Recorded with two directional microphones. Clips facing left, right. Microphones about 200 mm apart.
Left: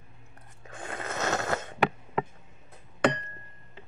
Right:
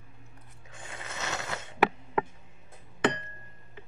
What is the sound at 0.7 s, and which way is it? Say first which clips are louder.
Snoring: left 8 dB; 55° left (ahead or behind).